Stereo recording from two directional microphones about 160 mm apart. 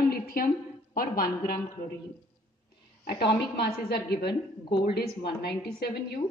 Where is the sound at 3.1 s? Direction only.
90° left.